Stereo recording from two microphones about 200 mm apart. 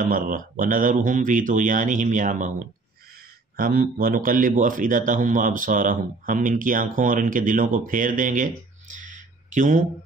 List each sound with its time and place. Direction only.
0.0 s speech: 45° right (ahead or behind)
3.5 s a man's voice: 45° right (ahead or behind)
8.9 s a sound: 40° right (ahead or behind)